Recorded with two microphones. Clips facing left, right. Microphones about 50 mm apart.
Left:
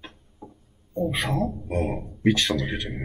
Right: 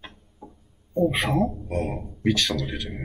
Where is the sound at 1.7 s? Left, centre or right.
Centre.